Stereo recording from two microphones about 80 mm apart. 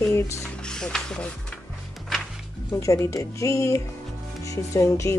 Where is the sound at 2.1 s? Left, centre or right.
Centre.